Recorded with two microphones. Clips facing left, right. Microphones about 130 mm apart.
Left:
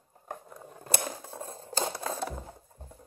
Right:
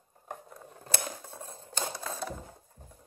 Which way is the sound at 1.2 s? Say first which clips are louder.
Left 4 dB; 30° left (ahead or behind).